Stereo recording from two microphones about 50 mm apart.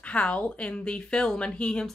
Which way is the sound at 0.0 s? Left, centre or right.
Left.